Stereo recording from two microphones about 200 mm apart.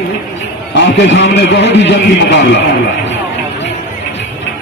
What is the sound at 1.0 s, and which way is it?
A man's voice, 65° left (ahead or behind).